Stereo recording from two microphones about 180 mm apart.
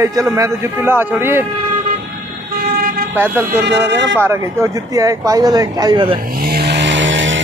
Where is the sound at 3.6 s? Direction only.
70° right (ahead or behind).